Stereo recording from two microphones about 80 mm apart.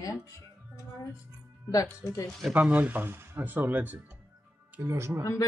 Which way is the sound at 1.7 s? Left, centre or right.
Left.